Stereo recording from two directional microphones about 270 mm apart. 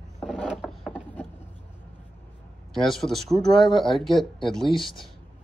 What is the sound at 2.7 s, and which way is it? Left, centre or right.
Speech, centre.